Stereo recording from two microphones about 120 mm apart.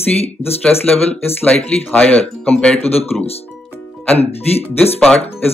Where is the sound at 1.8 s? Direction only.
10° left (ahead or behind).